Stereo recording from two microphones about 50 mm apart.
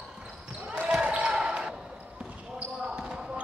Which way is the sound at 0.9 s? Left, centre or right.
Centre.